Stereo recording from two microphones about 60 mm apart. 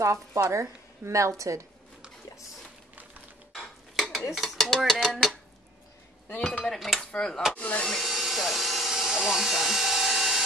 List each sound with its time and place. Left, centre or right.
0.0 s a woman's voice: right
3.5 s dishes: centre
4.3 s speech: centre
4.9 s dishes: centre
6.6 s dishes: centre
7.1 s speech: centre
7.8 s a sound: centre